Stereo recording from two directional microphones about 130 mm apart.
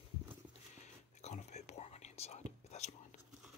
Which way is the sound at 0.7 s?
65° left (ahead or behind).